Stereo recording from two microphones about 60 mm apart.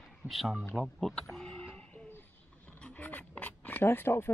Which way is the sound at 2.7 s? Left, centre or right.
Centre.